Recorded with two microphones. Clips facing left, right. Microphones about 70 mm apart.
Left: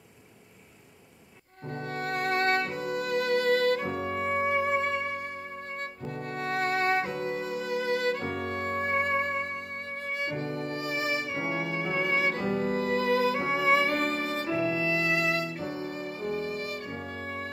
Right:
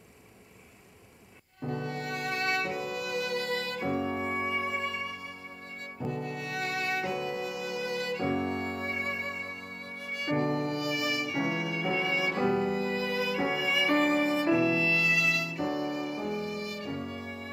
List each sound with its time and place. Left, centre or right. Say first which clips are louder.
1.7 s music: left 2 dB; left
10.6 s music: right 1 dB; left
13.8 s music: right 3 dB; right
14.6 s violin: right 1 dB; left